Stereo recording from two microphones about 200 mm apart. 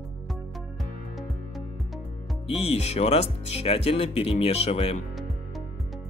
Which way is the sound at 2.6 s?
30° left (ahead or behind).